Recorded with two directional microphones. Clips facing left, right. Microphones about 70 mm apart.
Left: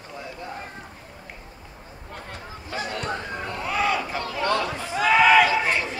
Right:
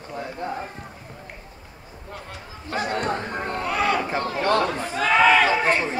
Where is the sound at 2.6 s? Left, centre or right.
Right.